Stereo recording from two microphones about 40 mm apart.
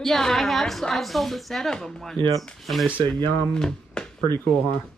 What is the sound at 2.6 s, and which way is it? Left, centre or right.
Speech, centre.